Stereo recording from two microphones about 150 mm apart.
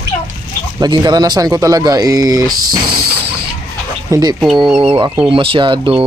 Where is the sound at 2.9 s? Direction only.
90° right.